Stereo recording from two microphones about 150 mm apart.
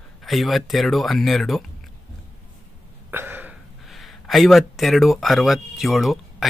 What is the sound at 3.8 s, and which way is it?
Speech, centre (ahead or behind).